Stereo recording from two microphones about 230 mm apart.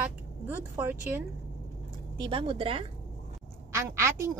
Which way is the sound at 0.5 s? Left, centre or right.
Centre.